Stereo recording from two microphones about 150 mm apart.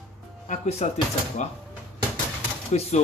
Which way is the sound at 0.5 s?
45° left (ahead or behind).